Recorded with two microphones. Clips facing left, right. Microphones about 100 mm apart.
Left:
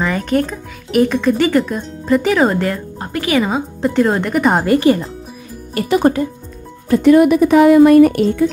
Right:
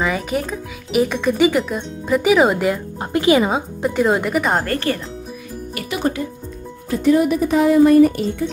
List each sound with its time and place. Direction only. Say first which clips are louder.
0.0 s speech: left 4 dB; 5° right (ahead or behind)
3.0 s speech: right 2 dB; 20° right (ahead or behind)
3.4 s speech: left 2 dB; 5° right (ahead or behind)
4.6 s speech: left 9 dB; 15° left (ahead or behind)
5.8 s speech: left 8 dB; 45° left (ahead or behind)
6.9 s speech: left 6 dB; 70° left (ahead or behind)